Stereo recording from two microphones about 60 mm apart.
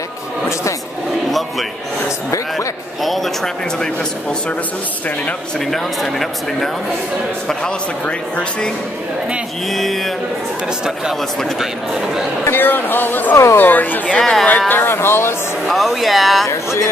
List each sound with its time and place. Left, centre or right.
3.0 s speech: centre
5.7 s speech: centre
9.7 s speech: centre
12.4 s speech: left
14.2 s speech: centre
14.7 s speech: left
15.7 s speech: centre
16.4 s speech: left